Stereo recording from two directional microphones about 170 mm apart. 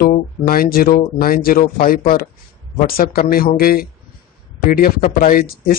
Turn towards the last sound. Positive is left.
turn(degrees=60)  # may be behind; listen again after turning